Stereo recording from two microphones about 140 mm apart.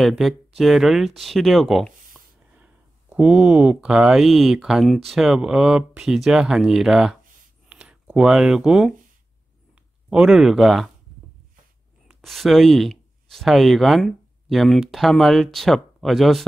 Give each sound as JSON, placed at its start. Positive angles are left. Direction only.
{"t": 0.0, "sound": "speech", "side_deg": 0}
{"t": 2.1, "sound": "speech", "side_deg": -10}
{"t": 10.0, "sound": "speech", "side_deg": -5}
{"t": 12.1, "sound": "speech", "side_deg": 0}